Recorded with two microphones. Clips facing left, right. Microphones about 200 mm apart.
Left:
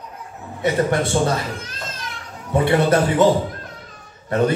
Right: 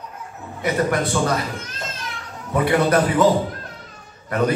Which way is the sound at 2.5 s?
25° left (ahead or behind).